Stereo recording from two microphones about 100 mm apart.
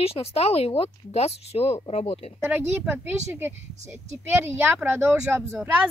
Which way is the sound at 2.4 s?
20° right (ahead or behind).